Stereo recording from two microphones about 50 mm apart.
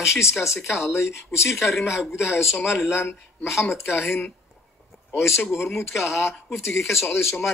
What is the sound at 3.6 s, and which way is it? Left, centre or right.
Speech, left.